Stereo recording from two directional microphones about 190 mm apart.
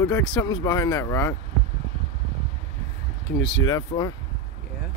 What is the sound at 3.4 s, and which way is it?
Speech, 85° left.